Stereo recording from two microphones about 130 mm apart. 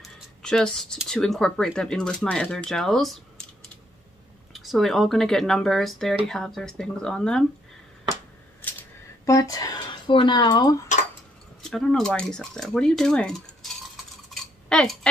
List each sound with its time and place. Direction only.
0.0 s speech: 5° left (ahead or behind)
4.5 s speech: centre (ahead or behind)
9.2 s speech: 25° left (ahead or behind)
11.7 s speech: 5° left (ahead or behind)
14.3 s cutlery: 5° left (ahead or behind)